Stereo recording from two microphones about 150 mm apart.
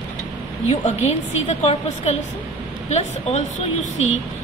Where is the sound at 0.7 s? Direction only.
50° left (ahead or behind).